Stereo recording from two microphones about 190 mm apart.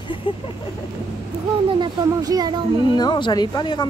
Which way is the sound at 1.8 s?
20° right (ahead or behind).